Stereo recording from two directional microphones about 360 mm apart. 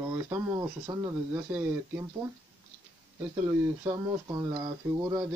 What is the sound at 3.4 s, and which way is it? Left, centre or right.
Speech, centre.